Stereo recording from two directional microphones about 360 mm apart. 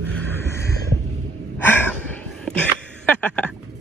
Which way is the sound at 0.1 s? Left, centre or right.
Centre.